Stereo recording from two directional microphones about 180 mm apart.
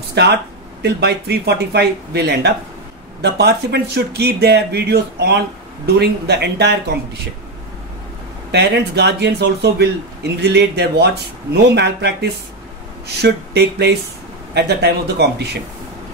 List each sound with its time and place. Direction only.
0.1 s speech: 70° right (ahead or behind)
8.5 s speech: 70° right (ahead or behind)